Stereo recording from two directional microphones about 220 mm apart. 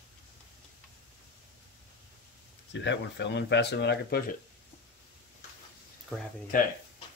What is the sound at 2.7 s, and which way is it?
Speech, 55° left (ahead or behind).